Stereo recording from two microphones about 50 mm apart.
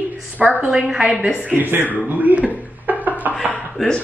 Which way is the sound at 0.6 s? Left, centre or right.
Right.